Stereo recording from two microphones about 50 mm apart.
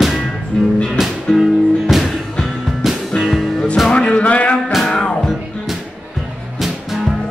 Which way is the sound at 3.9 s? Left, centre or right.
Left.